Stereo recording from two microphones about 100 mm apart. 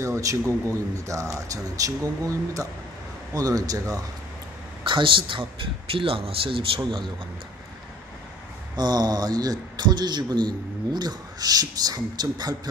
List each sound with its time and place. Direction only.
0.0 s a man's voice: 30° right (ahead or behind)
4.8 s a man's voice: 55° right (ahead or behind)
8.7 s a man's voice: 45° right (ahead or behind)